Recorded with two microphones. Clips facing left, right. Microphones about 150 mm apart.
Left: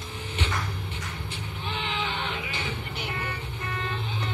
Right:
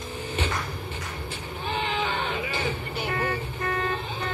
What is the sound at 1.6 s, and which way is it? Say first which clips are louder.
Music: right 4 dB; 45° right (ahead or behind).